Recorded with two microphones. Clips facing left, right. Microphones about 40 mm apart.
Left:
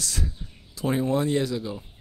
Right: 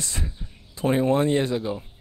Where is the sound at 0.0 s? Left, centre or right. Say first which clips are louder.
Even; right.